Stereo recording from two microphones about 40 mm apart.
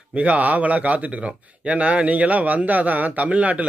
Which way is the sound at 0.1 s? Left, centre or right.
Right.